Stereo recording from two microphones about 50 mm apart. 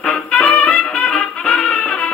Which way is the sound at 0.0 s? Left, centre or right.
Left.